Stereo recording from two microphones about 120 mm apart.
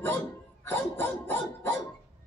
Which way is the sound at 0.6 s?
20° left (ahead or behind).